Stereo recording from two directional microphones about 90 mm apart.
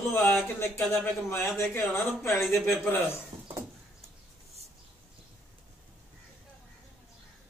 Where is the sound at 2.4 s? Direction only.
Centre (ahead or behind).